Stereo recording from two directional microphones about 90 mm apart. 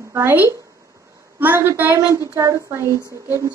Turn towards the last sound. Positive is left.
turn(degrees=-35)  # may be behind; listen again after turning